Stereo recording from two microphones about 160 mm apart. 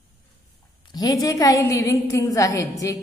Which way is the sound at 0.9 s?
25° left (ahead or behind).